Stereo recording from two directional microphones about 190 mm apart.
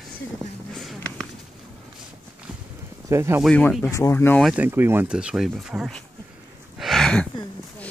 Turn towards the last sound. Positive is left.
turn(degrees=5)  # may be behind; listen again after turning